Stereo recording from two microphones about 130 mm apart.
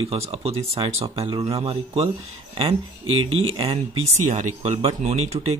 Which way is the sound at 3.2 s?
50° right (ahead or behind).